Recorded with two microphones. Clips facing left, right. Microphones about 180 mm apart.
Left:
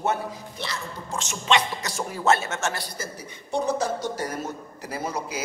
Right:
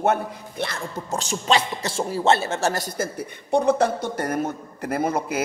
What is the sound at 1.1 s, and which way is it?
A man's voice, 35° right (ahead or behind).